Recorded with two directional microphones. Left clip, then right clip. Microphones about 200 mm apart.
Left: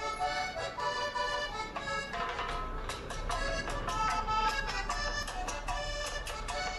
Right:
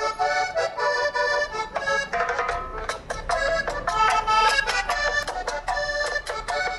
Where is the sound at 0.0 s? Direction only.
50° right (ahead or behind).